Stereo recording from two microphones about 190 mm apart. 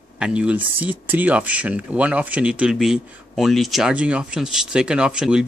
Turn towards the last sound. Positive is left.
turn(degrees=-5)  # may be behind; listen again after turning